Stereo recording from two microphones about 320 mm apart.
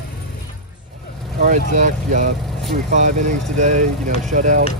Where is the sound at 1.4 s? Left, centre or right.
Right.